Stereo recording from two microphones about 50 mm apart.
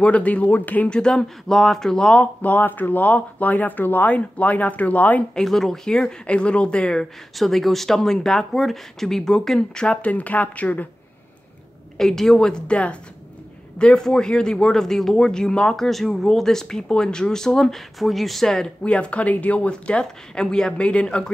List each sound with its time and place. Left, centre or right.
0.0 s speech: left
0.8 s speech: centre
2.4 s speech: left
5.3 s speech: centre
5.9 s speech: centre
7.3 s speech: centre
10.0 s speech: left
12.0 s speech: centre
15.8 s speech: centre; by 21.2 s left